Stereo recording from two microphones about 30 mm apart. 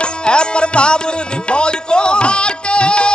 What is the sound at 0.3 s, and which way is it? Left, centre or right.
Music, left.